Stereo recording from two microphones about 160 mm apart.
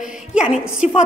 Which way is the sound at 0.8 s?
45° left (ahead or behind).